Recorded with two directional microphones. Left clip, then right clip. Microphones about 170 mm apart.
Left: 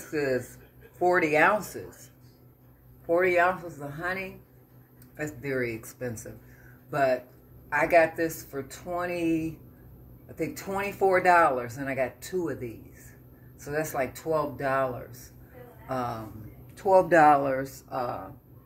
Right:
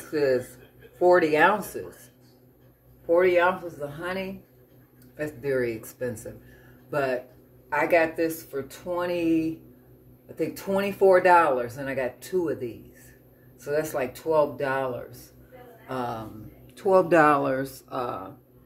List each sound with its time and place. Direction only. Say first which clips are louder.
0.9 s speech: right 3 dB; 20° right (ahead or behind)
3.1 s speech: right 3 dB; 20° right (ahead or behind)
5.1 s speech: right 4 dB; 20° right (ahead or behind)